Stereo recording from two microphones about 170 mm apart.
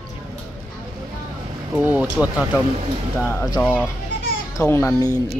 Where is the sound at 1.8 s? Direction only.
10° right (ahead or behind).